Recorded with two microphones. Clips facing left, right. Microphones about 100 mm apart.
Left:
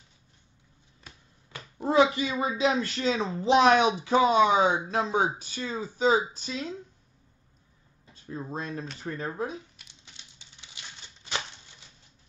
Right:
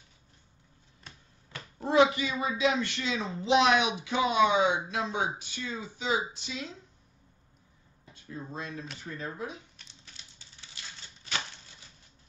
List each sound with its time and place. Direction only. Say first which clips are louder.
1.0 s finger snapping: left 1 dB; 15° left (ahead or behind)
1.9 s speech: left 1 dB; 30° left (ahead or behind)
8.1 s speech: left 5 dB; 35° left (ahead or behind)
9.8 s a sound: even; 15° left (ahead or behind)